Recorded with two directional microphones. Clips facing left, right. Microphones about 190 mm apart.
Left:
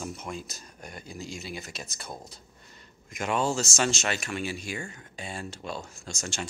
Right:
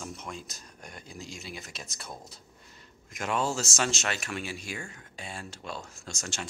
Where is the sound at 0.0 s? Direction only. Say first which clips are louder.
Left 4 dB; 5° left (ahead or behind).